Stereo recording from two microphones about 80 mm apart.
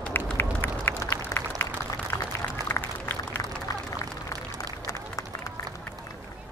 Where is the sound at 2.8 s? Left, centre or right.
Left.